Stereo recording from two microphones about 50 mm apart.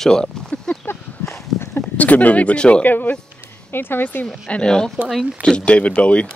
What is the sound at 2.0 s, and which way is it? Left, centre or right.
Speech, left.